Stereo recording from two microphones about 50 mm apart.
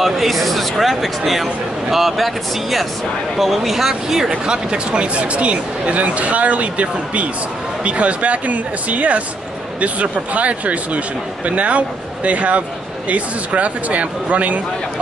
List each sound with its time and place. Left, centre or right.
0.0 s speech: centre; by 14.6 s right